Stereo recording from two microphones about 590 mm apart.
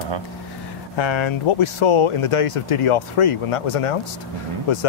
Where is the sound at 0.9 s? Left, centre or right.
Left.